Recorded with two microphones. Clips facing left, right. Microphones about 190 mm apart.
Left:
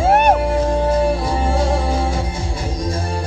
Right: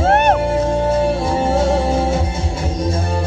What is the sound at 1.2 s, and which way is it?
Music, 25° right (ahead or behind).